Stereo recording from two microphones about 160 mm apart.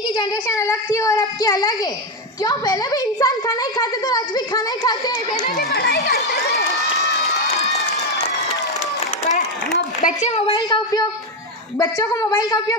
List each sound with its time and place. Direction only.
0.2 s a woman's voice: 20° left (ahead or behind)
5.6 s speech: 90° left
10.0 s a woman's voice: 40° left (ahead or behind); by 12.7 s 25° left (ahead or behind)